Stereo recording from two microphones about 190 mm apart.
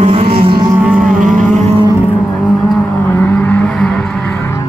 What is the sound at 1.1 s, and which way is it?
Vehicle, 45° right (ahead or behind).